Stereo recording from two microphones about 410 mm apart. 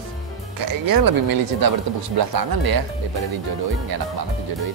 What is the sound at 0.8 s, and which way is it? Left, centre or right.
Speech, right.